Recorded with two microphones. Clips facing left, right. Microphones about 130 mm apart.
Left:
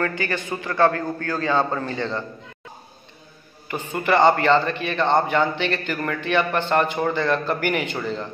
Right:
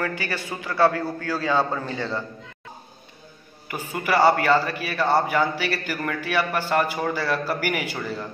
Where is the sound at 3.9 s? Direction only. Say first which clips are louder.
Left 2 dB; 5° right (ahead or behind).